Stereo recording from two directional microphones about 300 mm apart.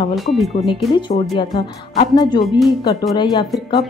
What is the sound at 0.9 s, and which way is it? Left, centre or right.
Speech, centre.